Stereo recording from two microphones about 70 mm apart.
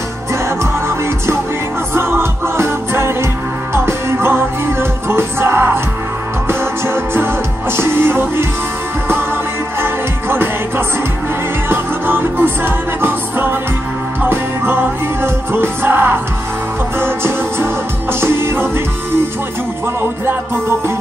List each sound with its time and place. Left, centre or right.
0.8 s music: right
7.7 s music: right
11.7 s music: right